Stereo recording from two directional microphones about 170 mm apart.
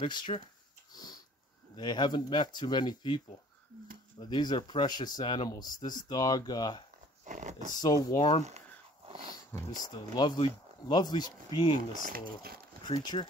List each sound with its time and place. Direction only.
0.0 s speech: 30° left (ahead or behind)
0.9 s sniff: 20° left (ahead or behind)
1.8 s speech: 25° left (ahead or behind)
4.2 s speech: 25° left (ahead or behind)
7.2 s speech: 45° right (ahead or behind)
7.8 s speech: 20° left (ahead or behind)
13.1 s speech: 30° left (ahead or behind)